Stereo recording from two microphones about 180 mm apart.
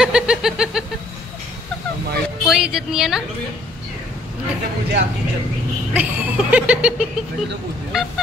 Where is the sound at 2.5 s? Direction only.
5° right (ahead or behind).